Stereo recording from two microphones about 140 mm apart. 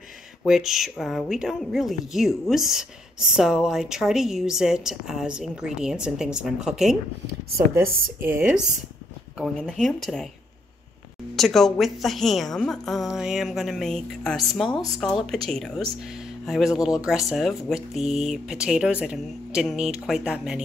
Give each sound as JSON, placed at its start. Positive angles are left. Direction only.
{"t": 0.5, "sound": "speech", "side_deg": 0}
{"t": 7.5, "sound": "speech", "side_deg": -20}
{"t": 9.4, "sound": "speech", "side_deg": 5}
{"t": 11.3, "sound": "speech", "side_deg": 0}